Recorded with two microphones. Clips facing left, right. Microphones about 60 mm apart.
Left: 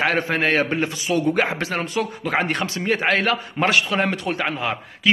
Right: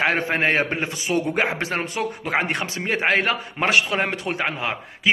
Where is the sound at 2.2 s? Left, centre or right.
Centre.